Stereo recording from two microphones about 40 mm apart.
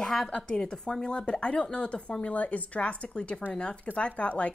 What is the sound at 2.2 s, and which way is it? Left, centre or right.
A woman's voice, left.